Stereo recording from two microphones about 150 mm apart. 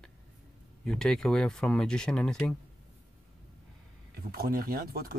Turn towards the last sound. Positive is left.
turn(degrees=-80)